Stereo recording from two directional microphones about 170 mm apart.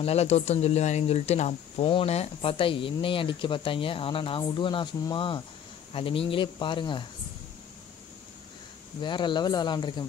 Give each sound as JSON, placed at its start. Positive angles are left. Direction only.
{"t": 0.0, "sound": "speech", "side_deg": 40}
{"t": 9.0, "sound": "speech", "side_deg": 30}